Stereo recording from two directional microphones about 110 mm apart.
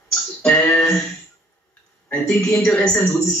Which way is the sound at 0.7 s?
25° left (ahead or behind).